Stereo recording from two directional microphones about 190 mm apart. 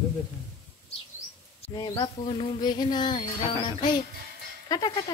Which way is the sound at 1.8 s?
20° left (ahead or behind).